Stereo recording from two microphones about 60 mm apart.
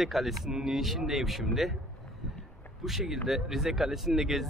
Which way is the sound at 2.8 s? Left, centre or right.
Centre.